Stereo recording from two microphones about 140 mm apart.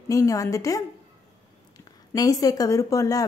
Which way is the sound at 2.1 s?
25° left (ahead or behind).